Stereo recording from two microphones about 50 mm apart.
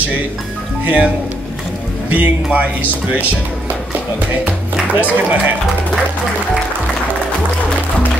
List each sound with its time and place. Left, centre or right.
0.8 s speech: right
4.8 s speech: right